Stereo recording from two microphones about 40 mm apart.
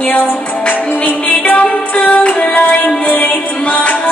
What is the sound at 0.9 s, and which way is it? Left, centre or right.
Music, left.